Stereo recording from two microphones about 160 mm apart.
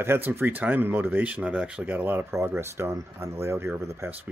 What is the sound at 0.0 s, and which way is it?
Speech, 15° right (ahead or behind).